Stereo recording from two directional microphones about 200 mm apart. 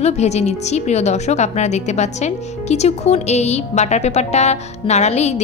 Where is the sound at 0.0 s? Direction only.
35° left (ahead or behind).